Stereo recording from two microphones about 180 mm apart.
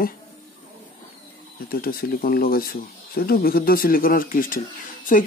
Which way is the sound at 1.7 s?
55° left (ahead or behind).